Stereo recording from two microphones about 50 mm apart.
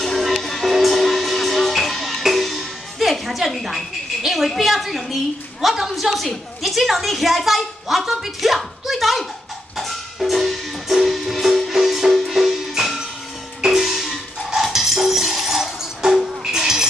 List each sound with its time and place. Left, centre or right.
0.0 s music: centre
2.2 s music: centre
4.2 s a woman's voice: centre
9.8 s music: centre